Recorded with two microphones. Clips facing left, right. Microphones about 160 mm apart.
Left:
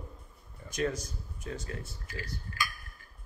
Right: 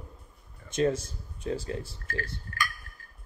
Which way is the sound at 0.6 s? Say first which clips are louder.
Right 6 dB; 25° right (ahead or behind).